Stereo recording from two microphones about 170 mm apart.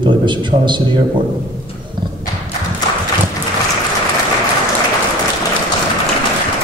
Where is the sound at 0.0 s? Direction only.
30° right (ahead or behind).